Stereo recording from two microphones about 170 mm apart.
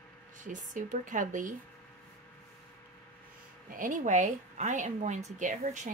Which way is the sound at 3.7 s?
50° right (ahead or behind).